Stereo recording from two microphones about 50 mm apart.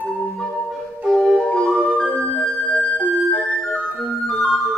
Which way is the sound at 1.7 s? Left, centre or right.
Centre.